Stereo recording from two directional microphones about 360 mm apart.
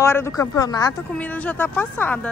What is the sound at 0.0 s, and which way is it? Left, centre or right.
Speech, centre.